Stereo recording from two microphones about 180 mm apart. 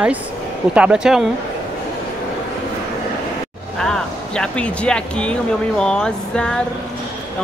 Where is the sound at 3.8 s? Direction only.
5° left (ahead or behind).